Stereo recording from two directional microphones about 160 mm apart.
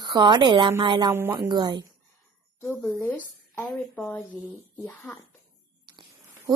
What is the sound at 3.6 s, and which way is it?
A woman's voice, 5° left (ahead or behind).